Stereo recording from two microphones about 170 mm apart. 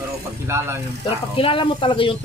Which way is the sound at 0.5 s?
15° right (ahead or behind).